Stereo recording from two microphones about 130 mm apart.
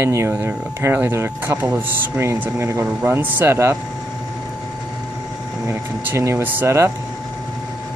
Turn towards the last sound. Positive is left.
turn(degrees=-20)  # may be behind; listen again after turning